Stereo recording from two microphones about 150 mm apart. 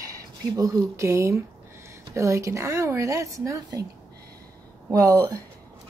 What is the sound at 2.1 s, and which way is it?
A woman's voice, 20° right (ahead or behind).